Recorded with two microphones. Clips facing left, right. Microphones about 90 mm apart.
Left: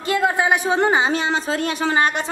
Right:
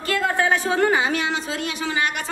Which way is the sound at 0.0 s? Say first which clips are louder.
Left 2 dB; 20° left (ahead or behind).